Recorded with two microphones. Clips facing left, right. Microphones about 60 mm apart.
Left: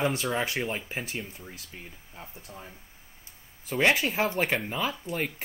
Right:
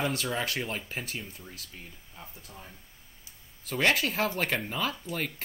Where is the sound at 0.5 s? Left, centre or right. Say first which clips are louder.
Left 2 dB; centre.